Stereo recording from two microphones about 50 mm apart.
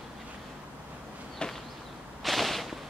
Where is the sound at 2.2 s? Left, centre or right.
Centre.